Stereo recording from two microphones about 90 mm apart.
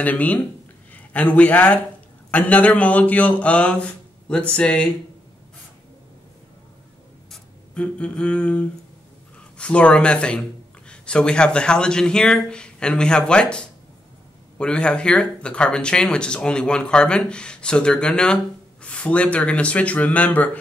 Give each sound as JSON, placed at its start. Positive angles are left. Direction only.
{"t": 0.0, "sound": "a man's voice", "side_deg": 15}
{"t": 7.7, "sound": "speech", "side_deg": 15}